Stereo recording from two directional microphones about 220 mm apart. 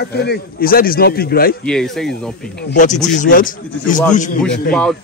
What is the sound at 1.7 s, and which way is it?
Speech, centre (ahead or behind).